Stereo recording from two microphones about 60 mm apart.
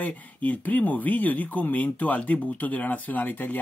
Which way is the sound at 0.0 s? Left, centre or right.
Left.